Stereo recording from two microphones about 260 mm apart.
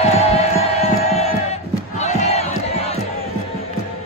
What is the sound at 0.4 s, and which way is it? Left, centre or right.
Music, left.